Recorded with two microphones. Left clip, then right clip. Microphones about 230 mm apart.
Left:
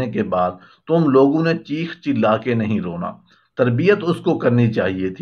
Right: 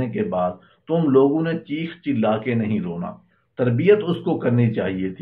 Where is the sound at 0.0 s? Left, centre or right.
Left.